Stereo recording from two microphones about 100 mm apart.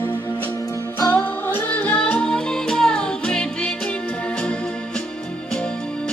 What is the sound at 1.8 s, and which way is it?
Music, 15° left (ahead or behind).